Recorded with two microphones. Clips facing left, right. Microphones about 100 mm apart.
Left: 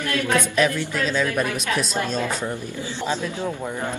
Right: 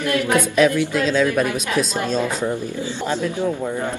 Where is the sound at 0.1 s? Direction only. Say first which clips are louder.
Right 3 dB; 15° right (ahead or behind).